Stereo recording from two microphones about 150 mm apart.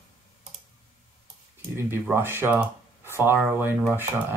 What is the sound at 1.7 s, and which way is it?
Speech, 15° right (ahead or behind).